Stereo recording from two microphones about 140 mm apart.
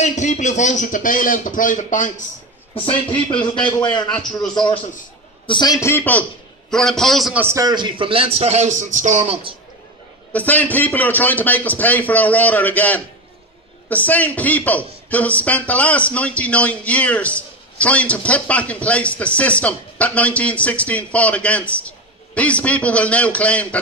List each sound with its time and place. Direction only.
0.0 s a man's voice: 55° left (ahead or behind)
2.7 s a man's voice: 40° left (ahead or behind)
3.4 s a man's voice: 30° left (ahead or behind)
4.1 s a man's voice: 5° left (ahead or behind)
5.5 s a man's voice: 30° left (ahead or behind); by 7.3 s centre (ahead or behind)
7.3 s a man's voice: 20° right (ahead or behind)
7.6 s a man's voice: 35° right (ahead or behind)
10.3 s a man's voice: 10° left (ahead or behind)